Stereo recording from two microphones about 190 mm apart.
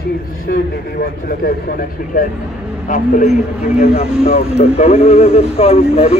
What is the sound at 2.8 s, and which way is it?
A man's voice, 45° left (ahead or behind).